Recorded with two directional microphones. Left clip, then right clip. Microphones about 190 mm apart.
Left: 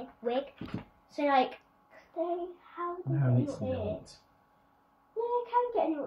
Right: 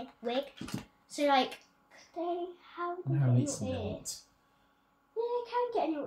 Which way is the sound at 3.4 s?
15° right (ahead or behind).